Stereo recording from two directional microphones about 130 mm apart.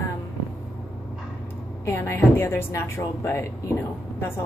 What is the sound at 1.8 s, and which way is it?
A woman's voice, 20° left (ahead or behind).